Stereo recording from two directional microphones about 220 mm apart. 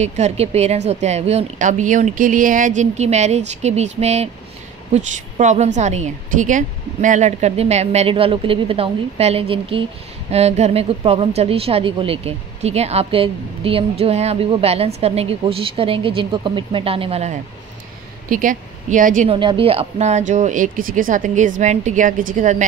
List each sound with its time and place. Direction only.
0.0 s a woman's voice: 30° right (ahead or behind)
19.3 s speech: 25° right (ahead or behind)